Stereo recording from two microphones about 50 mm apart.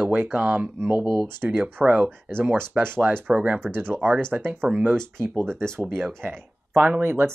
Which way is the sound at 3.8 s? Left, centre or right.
Right.